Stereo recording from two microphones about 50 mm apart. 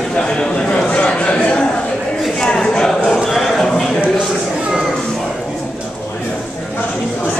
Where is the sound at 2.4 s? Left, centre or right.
Centre.